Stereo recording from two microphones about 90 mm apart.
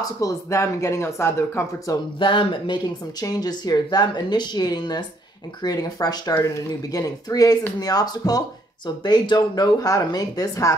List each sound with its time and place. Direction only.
0.2 s speech: 35° left (ahead or behind)
2.1 s speech: 65° left (ahead or behind)
2.8 s speech: 45° left (ahead or behind)